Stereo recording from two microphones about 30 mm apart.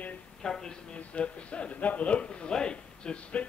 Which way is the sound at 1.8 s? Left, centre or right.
Left.